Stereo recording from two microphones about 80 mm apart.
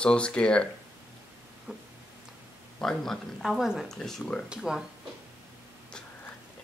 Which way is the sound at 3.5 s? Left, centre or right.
Centre.